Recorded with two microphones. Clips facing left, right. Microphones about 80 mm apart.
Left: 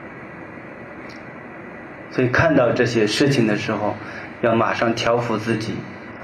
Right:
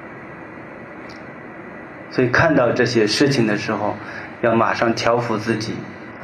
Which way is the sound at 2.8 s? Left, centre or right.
Right.